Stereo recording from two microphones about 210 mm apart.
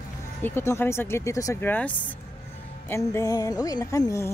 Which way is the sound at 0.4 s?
10° left (ahead or behind).